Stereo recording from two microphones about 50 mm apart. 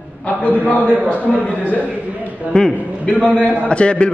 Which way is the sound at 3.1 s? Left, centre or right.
Left.